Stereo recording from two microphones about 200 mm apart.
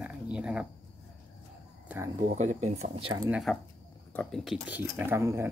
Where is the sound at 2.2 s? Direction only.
35° right (ahead or behind).